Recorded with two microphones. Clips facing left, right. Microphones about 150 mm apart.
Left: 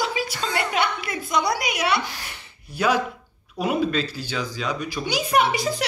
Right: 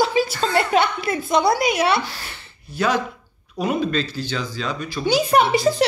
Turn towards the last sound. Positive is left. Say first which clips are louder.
# right 5 dB
turn(degrees=-30)  # may be behind; listen again after turning